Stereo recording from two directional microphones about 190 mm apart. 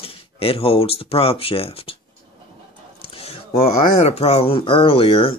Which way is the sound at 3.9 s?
35° left (ahead or behind).